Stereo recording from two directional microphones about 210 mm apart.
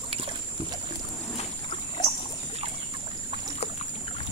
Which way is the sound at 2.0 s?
20° left (ahead or behind).